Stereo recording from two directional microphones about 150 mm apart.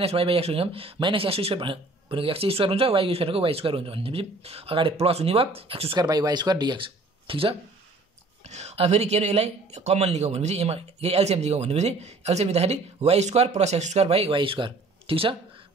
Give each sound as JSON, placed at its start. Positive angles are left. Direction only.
{"t": 0.0, "sound": "speech", "side_deg": -40}
{"t": 6.0, "sound": "speech", "side_deg": -25}
{"t": 8.5, "sound": "speech", "side_deg": -45}